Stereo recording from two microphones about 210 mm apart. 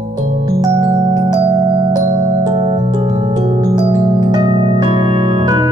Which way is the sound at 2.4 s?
20° right (ahead or behind).